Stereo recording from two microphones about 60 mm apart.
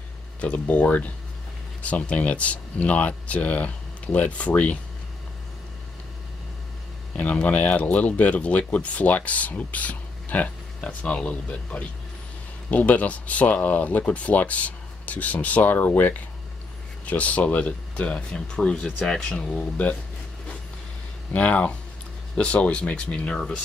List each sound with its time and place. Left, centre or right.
0.4 s speech: left
7.2 s speech: left
21.3 s speech: left